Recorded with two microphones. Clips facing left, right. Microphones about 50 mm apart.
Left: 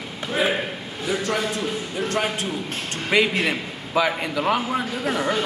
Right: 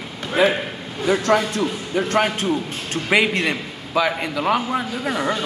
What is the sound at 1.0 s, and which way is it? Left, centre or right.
Speech, right.